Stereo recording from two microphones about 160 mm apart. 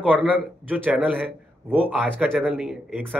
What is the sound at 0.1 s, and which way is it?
A man's voice, 10° right (ahead or behind).